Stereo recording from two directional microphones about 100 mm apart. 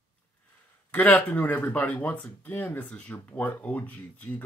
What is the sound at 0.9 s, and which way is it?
Speech, 15° left (ahead or behind).